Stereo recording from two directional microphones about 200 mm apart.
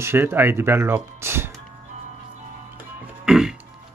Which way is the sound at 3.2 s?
5° right (ahead or behind).